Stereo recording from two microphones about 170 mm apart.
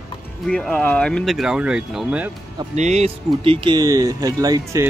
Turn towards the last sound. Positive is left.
turn(degrees=-20)  # may be behind; listen again after turning